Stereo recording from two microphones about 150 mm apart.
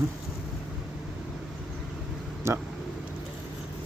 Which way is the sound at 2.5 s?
20° right (ahead or behind).